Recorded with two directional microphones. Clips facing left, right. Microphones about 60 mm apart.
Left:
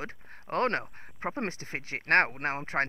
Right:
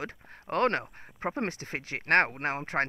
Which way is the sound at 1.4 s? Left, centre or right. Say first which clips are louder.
Right 1 dB; right.